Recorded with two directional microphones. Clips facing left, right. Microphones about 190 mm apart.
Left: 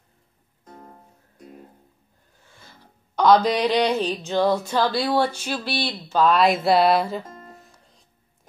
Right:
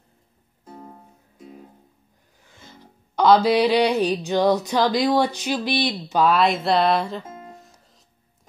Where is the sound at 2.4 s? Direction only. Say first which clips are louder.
Right 4 dB; 20° right (ahead or behind).